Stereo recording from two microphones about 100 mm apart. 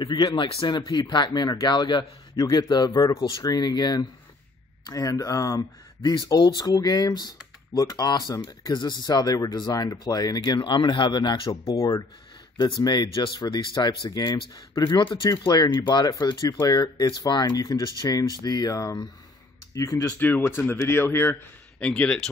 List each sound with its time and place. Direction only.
0.0 s speech: 50° left (ahead or behind)
11.6 s speech: 35° left (ahead or behind)
12.8 s speech: 45° left (ahead or behind); by 20.2 s 30° left (ahead or behind)
20.2 s speech: 20° left (ahead or behind)
21.7 s speech: 10° left (ahead or behind)